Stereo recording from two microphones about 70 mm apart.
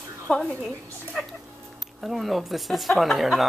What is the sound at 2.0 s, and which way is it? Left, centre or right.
Speech, centre.